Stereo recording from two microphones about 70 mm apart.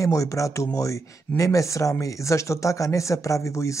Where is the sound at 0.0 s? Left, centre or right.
Left.